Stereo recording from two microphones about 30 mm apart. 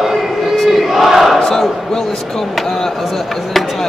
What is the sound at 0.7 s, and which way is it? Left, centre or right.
Speech, centre.